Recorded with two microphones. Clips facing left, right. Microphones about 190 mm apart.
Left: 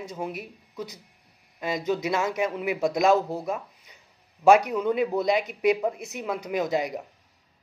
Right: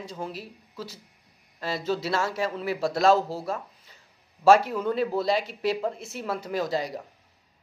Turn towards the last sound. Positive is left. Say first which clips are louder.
# left 2 dB
turn(degrees=20)  # may be behind; listen again after turning